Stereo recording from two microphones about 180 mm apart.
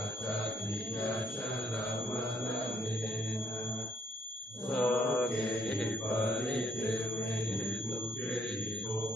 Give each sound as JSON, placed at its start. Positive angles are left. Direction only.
{"t": 4.7, "sound": "mantra", "side_deg": 5}
{"t": 6.5, "sound": "mantra", "side_deg": 5}